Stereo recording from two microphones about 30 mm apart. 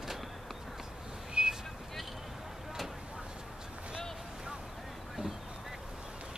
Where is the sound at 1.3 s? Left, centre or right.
Right.